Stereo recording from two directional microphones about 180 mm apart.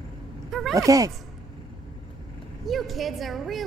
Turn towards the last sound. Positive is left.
turn(degrees=0)  # may be behind; listen again after turning